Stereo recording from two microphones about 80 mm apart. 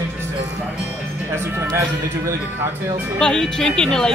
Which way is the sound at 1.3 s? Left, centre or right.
Right.